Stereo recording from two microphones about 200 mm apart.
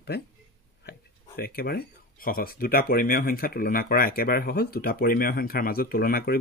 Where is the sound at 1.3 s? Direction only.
50° left (ahead or behind).